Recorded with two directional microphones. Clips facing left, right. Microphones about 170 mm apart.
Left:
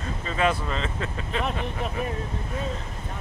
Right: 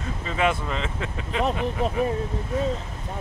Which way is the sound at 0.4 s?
15° right (ahead or behind).